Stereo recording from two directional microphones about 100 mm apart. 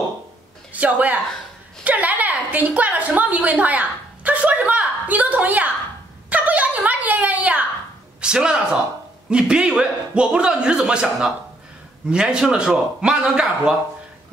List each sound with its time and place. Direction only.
0.7 s a man's voice: 15° right (ahead or behind)
6.3 s a sound: 15° right (ahead or behind)
8.2 s a man's voice: 10° right (ahead or behind)